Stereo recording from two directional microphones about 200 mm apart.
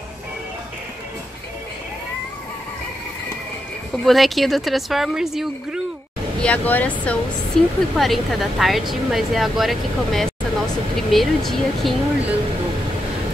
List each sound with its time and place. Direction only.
3.9 s speech: centre (ahead or behind)